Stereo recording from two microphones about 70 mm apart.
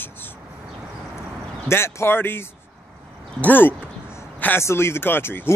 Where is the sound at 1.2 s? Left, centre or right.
Left.